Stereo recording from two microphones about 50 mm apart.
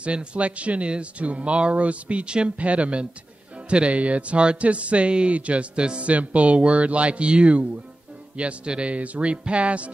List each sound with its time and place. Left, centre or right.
0.0 s speech: right